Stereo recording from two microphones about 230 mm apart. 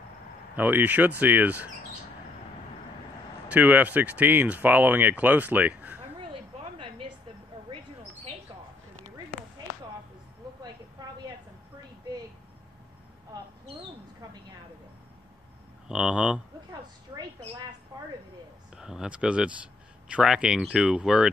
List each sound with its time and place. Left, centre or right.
0.6 s speech: centre
3.4 s speech: centre
6.3 s a sound: right
13.3 s bird: centre
15.9 s speech: centre
18.8 s speech: centre